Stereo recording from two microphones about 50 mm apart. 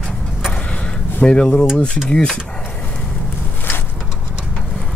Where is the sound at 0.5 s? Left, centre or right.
Left.